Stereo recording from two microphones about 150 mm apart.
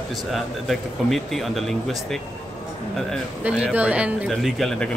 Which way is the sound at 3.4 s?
10° right (ahead or behind).